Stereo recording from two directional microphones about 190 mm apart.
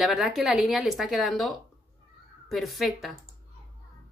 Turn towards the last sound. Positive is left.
turn(degrees=0)  # may be behind; listen again after turning